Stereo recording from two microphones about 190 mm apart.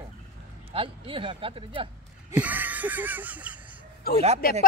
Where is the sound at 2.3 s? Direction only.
10° right (ahead or behind).